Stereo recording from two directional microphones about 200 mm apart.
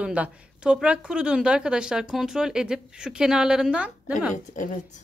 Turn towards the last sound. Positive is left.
turn(degrees=40)  # may be behind; listen again after turning